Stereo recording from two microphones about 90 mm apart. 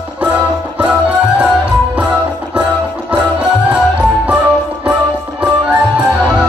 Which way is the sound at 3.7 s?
15° right (ahead or behind).